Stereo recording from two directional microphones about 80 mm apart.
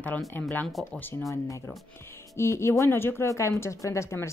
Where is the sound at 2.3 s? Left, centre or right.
Left.